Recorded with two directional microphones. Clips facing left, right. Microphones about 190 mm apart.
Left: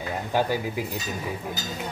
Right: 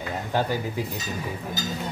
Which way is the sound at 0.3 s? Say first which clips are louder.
Left 1 dB; 15° left (ahead or behind).